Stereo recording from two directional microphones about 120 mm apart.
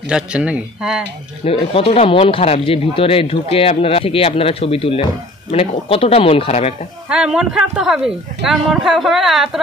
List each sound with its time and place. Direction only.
0.1 s speech: 10° right (ahead or behind)
1.4 s speech: 50° left (ahead or behind)
7.1 s speech: 5° right (ahead or behind)